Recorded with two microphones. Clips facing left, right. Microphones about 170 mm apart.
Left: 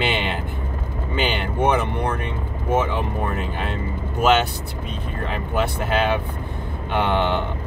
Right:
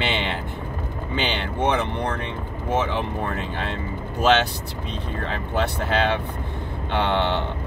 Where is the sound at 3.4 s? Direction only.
10° left (ahead or behind).